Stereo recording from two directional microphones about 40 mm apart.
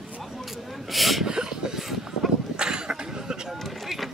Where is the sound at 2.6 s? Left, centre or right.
Right.